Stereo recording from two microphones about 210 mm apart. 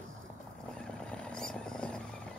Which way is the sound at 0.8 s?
5° left (ahead or behind).